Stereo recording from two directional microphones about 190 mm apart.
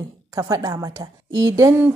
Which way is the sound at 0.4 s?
20° right (ahead or behind).